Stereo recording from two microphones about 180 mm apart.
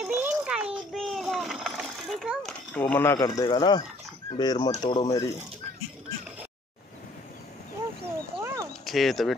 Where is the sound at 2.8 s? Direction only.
10° left (ahead or behind).